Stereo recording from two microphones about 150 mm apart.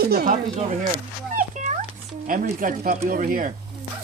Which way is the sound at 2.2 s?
65° right (ahead or behind).